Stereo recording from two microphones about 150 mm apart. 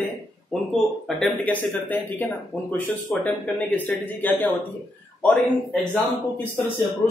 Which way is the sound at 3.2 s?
10° left (ahead or behind).